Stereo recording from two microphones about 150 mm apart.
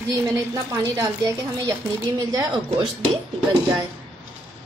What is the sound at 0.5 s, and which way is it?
A woman's voice, 25° right (ahead or behind).